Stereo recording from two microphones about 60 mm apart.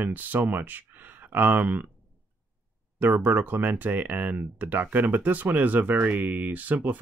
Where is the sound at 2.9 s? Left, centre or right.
Right.